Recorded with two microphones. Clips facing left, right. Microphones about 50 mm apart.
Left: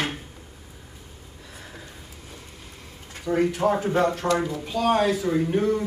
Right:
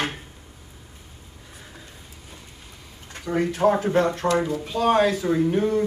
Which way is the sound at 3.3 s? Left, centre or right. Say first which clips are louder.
Left 1 dB; right.